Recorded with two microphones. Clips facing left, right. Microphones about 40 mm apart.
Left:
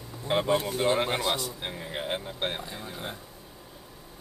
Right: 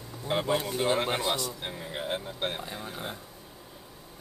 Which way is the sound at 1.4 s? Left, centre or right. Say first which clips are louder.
Even; centre.